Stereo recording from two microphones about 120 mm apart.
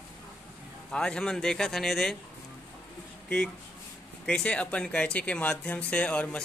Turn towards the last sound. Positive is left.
turn(degrees=10)  # may be behind; listen again after turning